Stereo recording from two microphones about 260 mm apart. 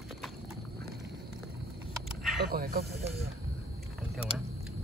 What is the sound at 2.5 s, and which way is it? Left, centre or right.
Speech, right.